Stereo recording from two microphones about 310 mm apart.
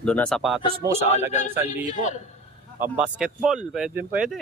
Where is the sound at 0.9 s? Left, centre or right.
Left.